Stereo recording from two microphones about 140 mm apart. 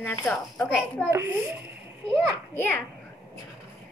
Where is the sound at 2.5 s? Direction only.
15° left (ahead or behind).